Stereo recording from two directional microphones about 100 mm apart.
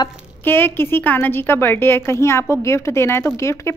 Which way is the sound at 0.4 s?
20° left (ahead or behind).